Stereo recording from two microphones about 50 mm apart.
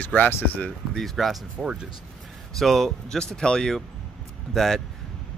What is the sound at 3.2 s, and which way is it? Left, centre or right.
Speech, centre.